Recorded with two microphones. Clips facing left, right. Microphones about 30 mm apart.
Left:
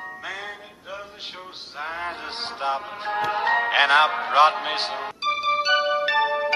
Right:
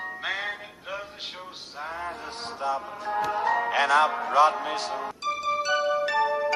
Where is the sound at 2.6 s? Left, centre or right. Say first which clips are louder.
Left 2 dB; left.